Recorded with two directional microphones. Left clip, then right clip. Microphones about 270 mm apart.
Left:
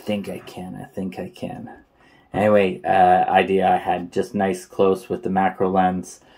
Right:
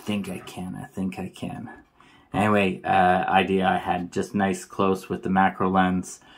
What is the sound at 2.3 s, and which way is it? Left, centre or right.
Speech, right.